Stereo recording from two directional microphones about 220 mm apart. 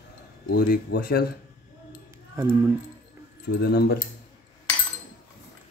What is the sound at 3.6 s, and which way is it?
Speech, 45° left (ahead or behind).